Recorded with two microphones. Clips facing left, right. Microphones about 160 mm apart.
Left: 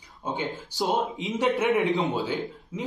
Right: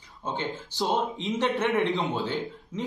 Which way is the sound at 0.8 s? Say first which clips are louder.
Left 1 dB; centre (ahead or behind).